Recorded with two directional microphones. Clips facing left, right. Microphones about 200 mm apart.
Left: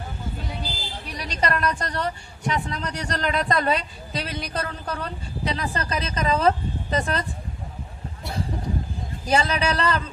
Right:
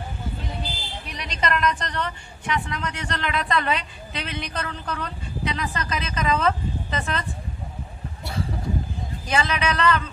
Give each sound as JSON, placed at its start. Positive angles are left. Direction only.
{"t": 1.1, "sound": "a woman's voice", "side_deg": 35}
{"t": 9.3, "sound": "a woman's voice", "side_deg": 35}